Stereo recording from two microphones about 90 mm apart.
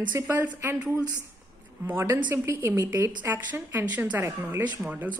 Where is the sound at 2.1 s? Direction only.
25° right (ahead or behind).